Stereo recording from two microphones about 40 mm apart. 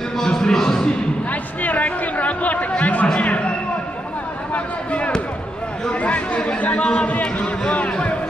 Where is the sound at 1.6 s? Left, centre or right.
Left.